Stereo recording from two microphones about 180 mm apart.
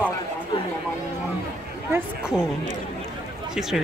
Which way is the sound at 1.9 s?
5° right (ahead or behind).